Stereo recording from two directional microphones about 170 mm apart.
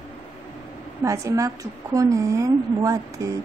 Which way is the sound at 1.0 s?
20° right (ahead or behind).